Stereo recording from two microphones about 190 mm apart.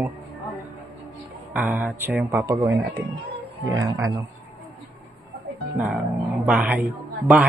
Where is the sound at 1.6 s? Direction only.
10° right (ahead or behind).